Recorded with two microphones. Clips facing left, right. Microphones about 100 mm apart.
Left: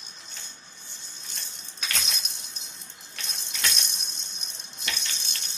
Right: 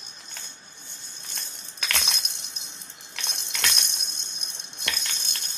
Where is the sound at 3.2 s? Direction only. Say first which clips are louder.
Right 2 dB; 65° right (ahead or behind).